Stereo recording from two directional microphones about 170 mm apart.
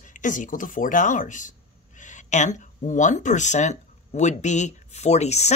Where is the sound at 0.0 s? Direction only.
50° left (ahead or behind).